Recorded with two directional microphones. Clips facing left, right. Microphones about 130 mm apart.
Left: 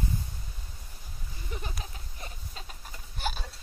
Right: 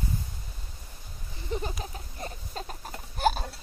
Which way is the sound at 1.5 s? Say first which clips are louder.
Right 8 dB; 30° right (ahead or behind).